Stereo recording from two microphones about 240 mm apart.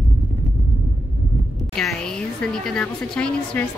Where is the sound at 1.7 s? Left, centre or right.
Centre.